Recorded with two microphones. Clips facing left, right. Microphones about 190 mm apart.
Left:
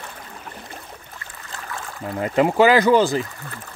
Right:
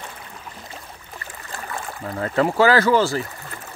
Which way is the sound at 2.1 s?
15° left (ahead or behind).